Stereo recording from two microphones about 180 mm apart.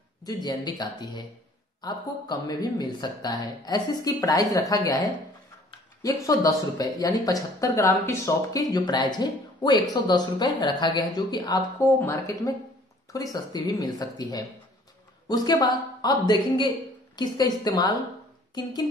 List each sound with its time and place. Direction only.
0.2 s a woman's voice: 20° left (ahead or behind)